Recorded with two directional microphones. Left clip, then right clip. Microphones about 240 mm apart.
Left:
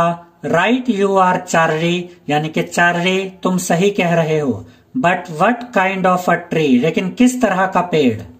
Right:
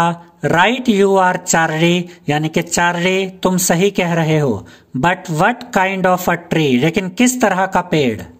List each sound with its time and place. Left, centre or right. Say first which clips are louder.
0.0 s speech: right 1 dB; right